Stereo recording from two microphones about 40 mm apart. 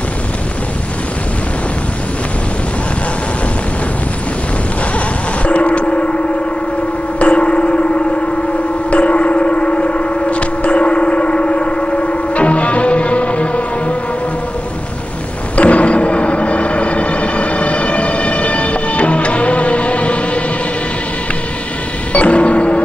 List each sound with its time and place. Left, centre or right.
4.9 s music: left
7.2 s a sound: left
8.9 s civil defense siren: left
15.5 s music: left
22.1 s music: left